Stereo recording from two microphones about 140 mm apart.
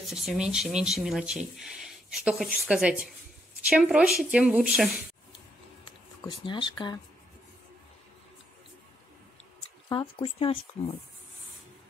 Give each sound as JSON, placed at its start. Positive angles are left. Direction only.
{"t": 0.0, "sound": "speech", "side_deg": 0}
{"t": 6.2, "sound": "speech", "side_deg": 35}
{"t": 9.8, "sound": "speech", "side_deg": 40}